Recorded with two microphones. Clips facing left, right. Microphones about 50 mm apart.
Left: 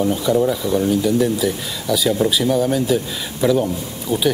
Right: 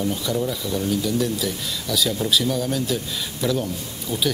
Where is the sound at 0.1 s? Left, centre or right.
Centre.